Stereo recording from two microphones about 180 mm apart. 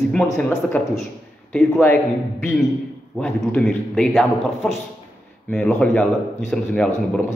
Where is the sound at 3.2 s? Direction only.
5° left (ahead or behind).